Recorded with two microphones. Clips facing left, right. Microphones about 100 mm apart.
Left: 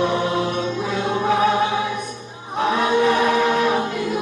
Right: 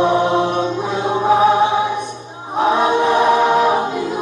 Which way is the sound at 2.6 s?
25° right (ahead or behind).